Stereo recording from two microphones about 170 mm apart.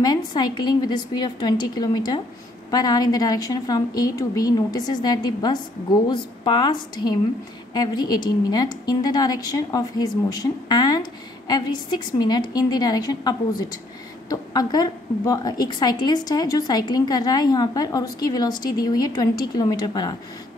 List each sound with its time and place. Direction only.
0.0 s a woman's voice: 25° left (ahead or behind)